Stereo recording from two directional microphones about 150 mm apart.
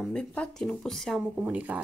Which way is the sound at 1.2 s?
10° right (ahead or behind).